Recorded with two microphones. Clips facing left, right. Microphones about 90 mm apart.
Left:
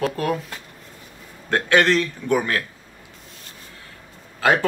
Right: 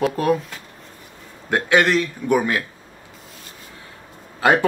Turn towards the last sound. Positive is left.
turn(degrees=-20)  # may be behind; listen again after turning